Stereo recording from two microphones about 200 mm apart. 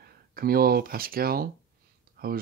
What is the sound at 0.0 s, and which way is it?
Speech, 50° right (ahead or behind).